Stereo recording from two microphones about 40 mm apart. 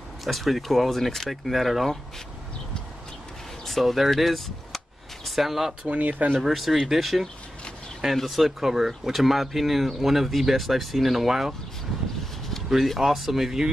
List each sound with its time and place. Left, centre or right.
0.2 s speech: centre
3.6 s speech: centre
4.1 s cap gun: centre
5.9 s speech: right
6.4 s speech: centre
12.6 s speech: centre